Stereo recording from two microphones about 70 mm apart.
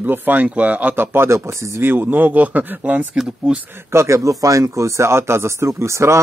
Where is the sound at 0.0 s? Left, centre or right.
Right.